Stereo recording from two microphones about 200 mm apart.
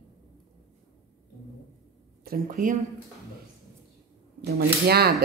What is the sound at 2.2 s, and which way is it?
Speech, 45° right (ahead or behind).